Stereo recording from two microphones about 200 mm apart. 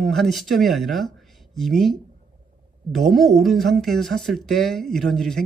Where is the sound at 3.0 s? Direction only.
Centre (ahead or behind).